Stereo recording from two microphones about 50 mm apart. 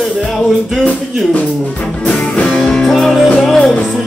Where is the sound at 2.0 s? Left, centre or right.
Left.